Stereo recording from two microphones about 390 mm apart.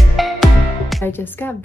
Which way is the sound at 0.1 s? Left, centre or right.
Centre.